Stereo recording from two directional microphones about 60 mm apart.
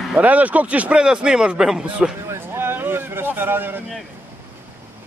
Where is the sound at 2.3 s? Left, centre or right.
Right.